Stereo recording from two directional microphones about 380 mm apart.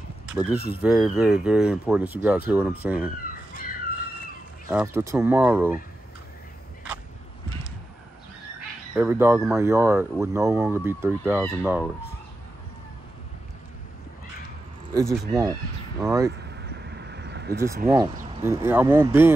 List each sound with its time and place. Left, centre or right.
0.3 s speech: centre
4.6 s speech: centre
8.5 s speech: centre
15.0 s speech: centre
16.8 s vehicle: right
17.8 s speech: centre